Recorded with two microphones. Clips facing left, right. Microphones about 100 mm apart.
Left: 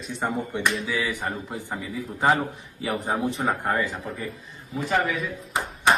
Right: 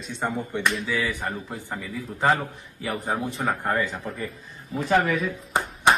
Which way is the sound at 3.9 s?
Centre (ahead or behind).